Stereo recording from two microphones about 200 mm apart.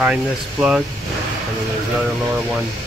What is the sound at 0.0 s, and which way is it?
Speech, 5° right (ahead or behind).